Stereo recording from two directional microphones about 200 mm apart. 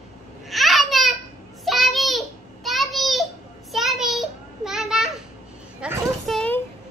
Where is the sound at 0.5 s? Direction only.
Centre (ahead or behind).